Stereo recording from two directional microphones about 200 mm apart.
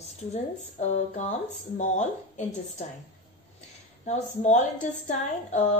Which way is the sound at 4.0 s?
35° left (ahead or behind).